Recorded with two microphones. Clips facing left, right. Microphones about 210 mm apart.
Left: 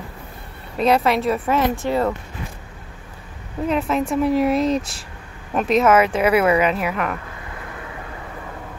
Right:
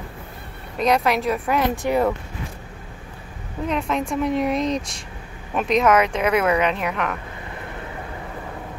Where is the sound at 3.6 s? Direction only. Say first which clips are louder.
Left 3 dB; 5° left (ahead or behind).